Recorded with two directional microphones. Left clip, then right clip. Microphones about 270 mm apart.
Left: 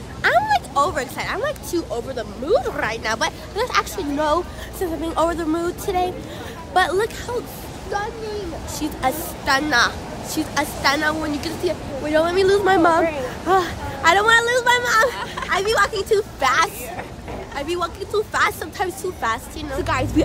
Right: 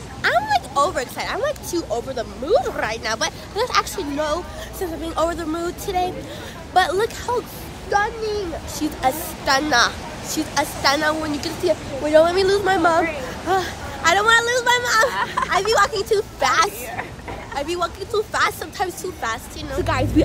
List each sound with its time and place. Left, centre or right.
0.2 s speech: centre
7.9 s speech: right
9.0 s speech: centre
15.1 s speech: right
15.5 s speech: centre